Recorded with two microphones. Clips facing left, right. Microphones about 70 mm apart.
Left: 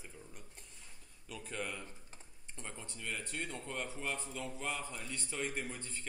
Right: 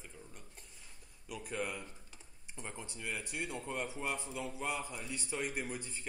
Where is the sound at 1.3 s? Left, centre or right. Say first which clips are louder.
Right 3 dB; centre.